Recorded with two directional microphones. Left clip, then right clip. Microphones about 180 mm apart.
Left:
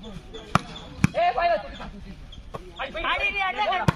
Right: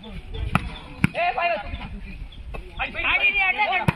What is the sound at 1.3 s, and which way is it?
Chop, 15° left (ahead or behind).